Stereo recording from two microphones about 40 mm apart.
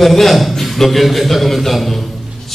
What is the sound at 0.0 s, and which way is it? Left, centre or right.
A man's voice, centre.